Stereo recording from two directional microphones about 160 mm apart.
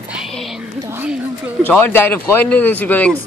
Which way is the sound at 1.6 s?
15° left (ahead or behind).